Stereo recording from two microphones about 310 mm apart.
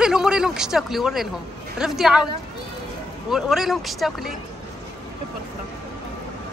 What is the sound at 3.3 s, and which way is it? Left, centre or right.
Speech, centre.